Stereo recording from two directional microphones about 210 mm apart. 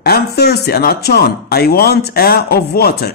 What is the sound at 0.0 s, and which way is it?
Speech, 50° left (ahead or behind).